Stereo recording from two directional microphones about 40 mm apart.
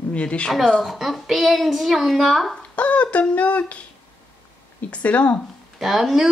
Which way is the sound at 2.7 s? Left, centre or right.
Left.